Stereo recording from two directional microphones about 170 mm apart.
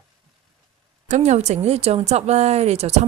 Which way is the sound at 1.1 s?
40° right (ahead or behind).